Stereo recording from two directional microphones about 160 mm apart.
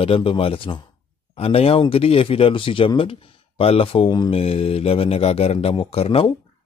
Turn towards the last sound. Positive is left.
turn(degrees=35)  # may be behind; listen again after turning